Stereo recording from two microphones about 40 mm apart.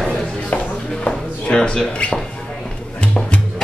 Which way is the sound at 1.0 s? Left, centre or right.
Left.